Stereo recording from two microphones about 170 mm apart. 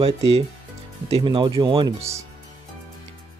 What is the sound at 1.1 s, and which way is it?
Speech, 30° right (ahead or behind).